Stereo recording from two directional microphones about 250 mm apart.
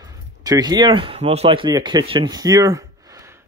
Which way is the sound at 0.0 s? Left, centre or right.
Centre.